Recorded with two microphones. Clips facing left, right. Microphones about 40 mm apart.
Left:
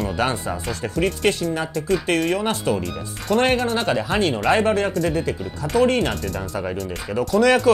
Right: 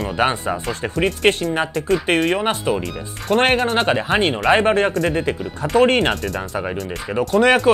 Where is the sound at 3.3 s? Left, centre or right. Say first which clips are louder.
Right 3 dB; right.